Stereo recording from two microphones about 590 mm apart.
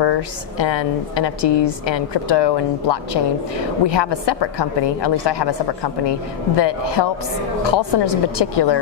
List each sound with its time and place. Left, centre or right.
0.0 s a woman's voice: left